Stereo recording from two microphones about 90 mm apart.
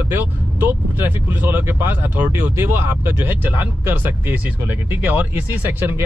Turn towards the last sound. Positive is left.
turn(degrees=-20)  # may be behind; listen again after turning